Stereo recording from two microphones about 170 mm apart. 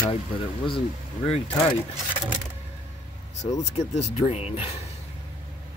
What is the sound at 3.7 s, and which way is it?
Speech, 40° left (ahead or behind).